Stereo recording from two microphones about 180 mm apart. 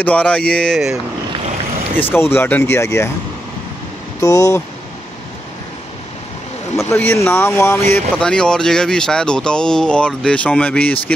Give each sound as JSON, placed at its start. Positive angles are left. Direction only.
{"t": 0.0, "sound": "speech", "side_deg": 10}
{"t": 2.0, "sound": "speech", "side_deg": 10}
{"t": 4.2, "sound": "speech", "side_deg": 20}
{"t": 6.8, "sound": "speech", "side_deg": 10}